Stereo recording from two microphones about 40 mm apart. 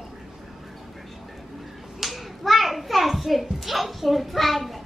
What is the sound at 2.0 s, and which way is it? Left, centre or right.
Hands, centre.